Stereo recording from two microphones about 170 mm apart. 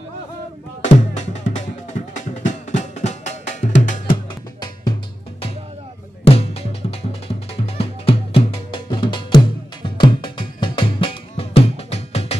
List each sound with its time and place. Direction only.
0.8 s music: 40° left (ahead or behind)
6.2 s music: 35° left (ahead or behind)